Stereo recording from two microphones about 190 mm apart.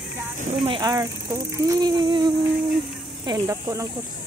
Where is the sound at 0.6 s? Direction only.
25° right (ahead or behind).